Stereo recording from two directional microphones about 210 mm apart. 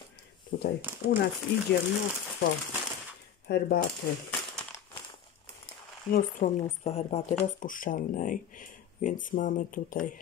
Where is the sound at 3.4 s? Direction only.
50° left (ahead or behind).